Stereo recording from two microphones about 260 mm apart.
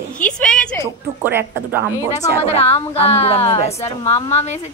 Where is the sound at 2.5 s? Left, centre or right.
Left.